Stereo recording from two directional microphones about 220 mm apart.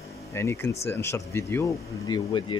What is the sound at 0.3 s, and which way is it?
Speech, 10° left (ahead or behind).